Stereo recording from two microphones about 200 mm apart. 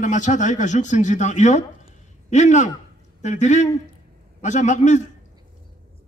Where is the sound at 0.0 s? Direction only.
35° left (ahead or behind).